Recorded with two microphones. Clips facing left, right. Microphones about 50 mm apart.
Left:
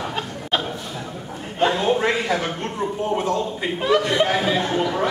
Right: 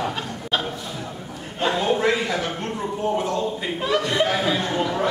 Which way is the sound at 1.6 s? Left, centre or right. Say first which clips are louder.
Left 2 dB; centre.